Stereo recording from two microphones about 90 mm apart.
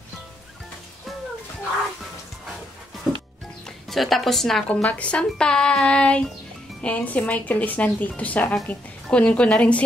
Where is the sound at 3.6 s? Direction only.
5° left (ahead or behind).